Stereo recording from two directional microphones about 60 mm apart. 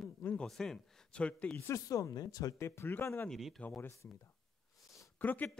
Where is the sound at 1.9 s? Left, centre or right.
Left.